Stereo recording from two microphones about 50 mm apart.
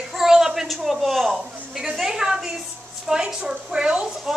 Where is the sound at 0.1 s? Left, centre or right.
Centre.